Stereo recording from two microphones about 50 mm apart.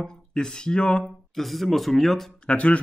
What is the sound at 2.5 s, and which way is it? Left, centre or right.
Speech, left.